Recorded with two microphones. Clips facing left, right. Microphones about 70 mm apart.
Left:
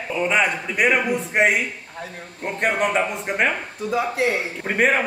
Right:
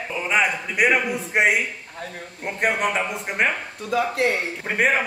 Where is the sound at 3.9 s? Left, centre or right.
Right.